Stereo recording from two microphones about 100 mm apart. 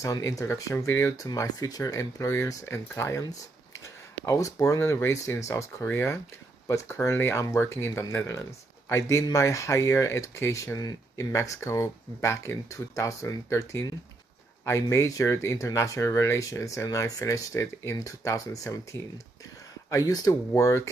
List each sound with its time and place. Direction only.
0.0 s speech: 35° left (ahead or behind)